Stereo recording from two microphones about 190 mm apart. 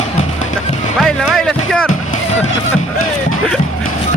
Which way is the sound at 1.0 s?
Centre (ahead or behind).